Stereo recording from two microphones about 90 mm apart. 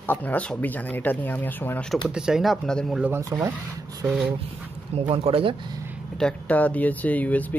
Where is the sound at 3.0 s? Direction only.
15° right (ahead or behind).